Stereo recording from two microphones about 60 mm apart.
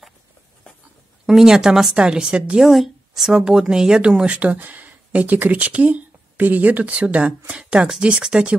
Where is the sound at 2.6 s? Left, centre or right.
Centre.